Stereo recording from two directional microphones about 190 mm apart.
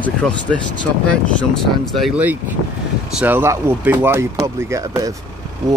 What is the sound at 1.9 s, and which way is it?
Speech, 5° right (ahead or behind).